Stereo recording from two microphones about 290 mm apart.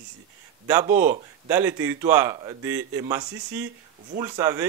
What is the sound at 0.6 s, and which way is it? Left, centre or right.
Speech, centre.